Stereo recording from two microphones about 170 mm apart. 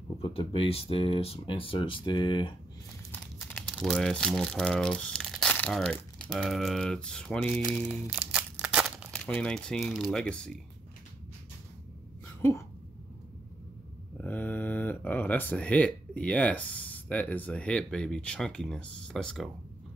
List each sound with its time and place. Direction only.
0.2 s speech: 35° left (ahead or behind)
3.1 s crumpling: 5° left (ahead or behind)
3.7 s speech: centre (ahead or behind)
8.2 s crumpling: 5° right (ahead or behind)
9.1 s speech: 5° left (ahead or behind)
12.4 s a sound: 15° left (ahead or behind)
14.1 s speech: 10° left (ahead or behind)